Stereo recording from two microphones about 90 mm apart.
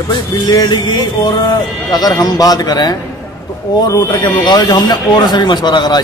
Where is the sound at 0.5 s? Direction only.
50° left (ahead or behind).